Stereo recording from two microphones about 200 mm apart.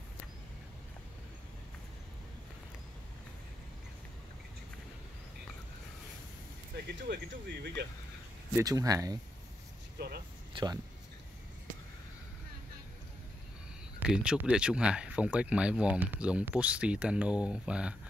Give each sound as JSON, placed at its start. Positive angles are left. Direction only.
{"t": 6.9, "sound": "speech", "side_deg": -55}
{"t": 8.5, "sound": "speech", "side_deg": -15}
{"t": 9.9, "sound": "speech", "side_deg": -50}
{"t": 10.5, "sound": "speech", "side_deg": -20}
{"t": 13.9, "sound": "speech", "side_deg": -5}